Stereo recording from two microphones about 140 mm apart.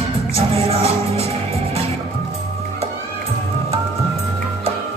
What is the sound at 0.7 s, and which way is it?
Music, 45° right (ahead or behind).